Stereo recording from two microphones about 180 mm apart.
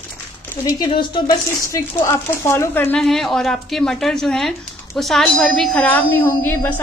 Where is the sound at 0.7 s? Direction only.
25° left (ahead or behind).